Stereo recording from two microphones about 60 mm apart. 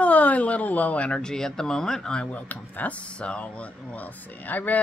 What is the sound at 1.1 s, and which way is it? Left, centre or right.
Speech, centre.